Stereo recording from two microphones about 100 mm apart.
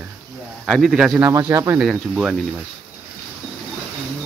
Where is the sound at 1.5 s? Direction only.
30° right (ahead or behind).